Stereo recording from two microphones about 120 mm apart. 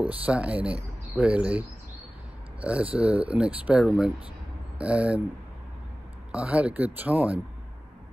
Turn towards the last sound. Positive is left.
turn(degrees=-10)  # may be behind; listen again after turning